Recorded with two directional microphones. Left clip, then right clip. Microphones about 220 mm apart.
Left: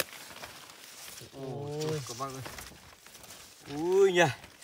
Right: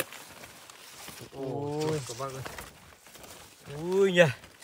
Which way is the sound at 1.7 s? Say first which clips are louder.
Right 2 dB; 35° right (ahead or behind).